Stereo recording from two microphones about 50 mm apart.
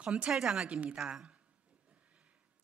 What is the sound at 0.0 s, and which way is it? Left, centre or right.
Speech, right.